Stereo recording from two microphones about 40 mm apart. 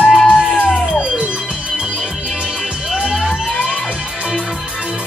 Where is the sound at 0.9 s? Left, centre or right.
Right.